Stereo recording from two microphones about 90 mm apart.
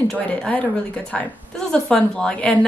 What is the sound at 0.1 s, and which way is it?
A woman's voice, 15° left (ahead or behind).